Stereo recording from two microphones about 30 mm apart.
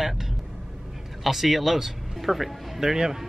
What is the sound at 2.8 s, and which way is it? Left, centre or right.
Speech, centre.